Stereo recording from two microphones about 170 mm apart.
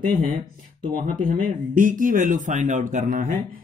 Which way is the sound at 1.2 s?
50° right (ahead or behind).